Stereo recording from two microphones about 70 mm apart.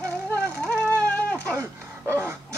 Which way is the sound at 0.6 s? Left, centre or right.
Centre.